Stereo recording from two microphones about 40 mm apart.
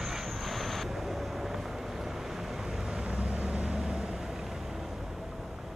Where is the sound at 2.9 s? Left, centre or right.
Right.